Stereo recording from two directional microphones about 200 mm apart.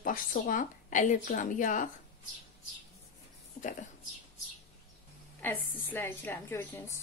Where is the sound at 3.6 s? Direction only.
40° left (ahead or behind).